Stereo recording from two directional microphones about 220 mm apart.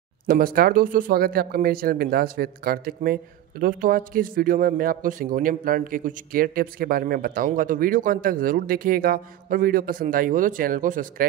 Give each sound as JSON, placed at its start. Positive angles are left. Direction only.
{"t": 0.3, "sound": "a man's voice", "side_deg": -40}